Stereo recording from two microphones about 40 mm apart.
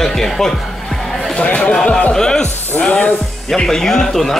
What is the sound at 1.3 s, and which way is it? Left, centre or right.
Speech, left.